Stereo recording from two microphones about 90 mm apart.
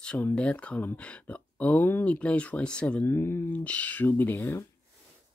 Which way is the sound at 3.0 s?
25° left (ahead or behind).